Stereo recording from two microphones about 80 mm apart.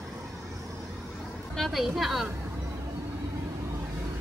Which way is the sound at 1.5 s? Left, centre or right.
Centre.